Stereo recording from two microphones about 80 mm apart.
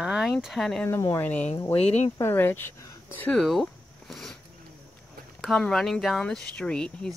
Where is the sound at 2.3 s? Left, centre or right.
Left.